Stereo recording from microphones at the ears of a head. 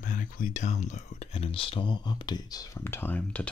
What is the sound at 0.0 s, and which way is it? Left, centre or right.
Speech, left.